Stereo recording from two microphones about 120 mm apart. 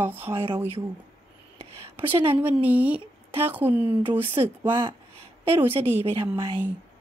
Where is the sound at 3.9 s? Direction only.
50° right (ahead or behind).